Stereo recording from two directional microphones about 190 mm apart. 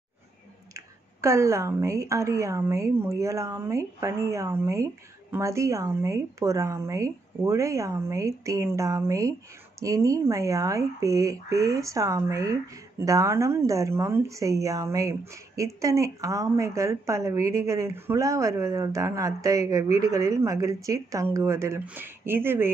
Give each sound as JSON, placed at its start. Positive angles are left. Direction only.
{"t": 0.7, "sound": "speech", "side_deg": -15}